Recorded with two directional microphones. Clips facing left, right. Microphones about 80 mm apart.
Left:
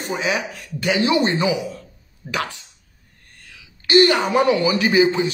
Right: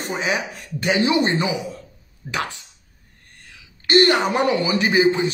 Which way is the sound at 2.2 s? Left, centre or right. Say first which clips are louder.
Left 1 dB; centre.